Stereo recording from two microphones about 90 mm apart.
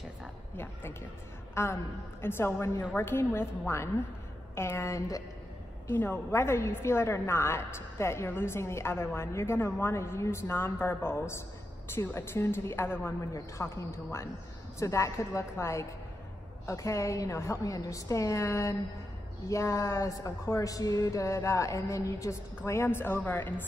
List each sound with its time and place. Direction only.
1.5 s a man's voice: 30° left (ahead or behind)
5.9 s a woman's voice: 25° left (ahead or behind)